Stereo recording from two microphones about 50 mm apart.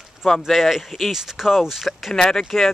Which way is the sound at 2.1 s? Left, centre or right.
Centre.